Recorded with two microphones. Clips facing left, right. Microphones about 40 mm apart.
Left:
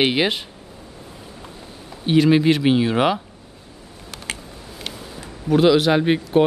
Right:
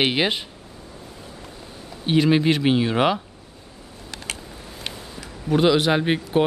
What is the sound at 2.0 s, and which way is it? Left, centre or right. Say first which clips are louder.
Speech: left 3 dB; centre.